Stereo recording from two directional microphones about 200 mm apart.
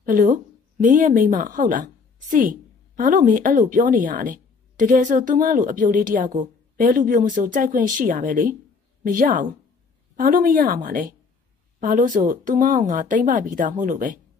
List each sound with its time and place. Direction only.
0.0 s a woman's voice: 40° right (ahead or behind)